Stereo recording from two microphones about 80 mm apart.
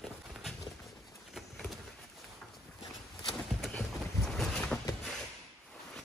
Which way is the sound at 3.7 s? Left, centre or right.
Centre.